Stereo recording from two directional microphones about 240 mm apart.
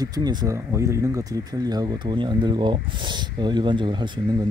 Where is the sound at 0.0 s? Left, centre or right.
Centre.